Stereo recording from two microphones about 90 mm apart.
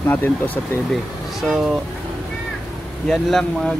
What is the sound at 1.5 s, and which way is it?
Speech, 5° right (ahead or behind).